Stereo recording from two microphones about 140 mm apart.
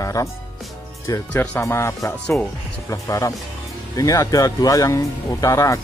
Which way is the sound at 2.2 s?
Centre (ahead or behind).